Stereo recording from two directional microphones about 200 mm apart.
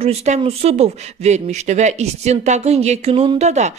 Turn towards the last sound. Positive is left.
turn(degrees=-35)  # may be behind; listen again after turning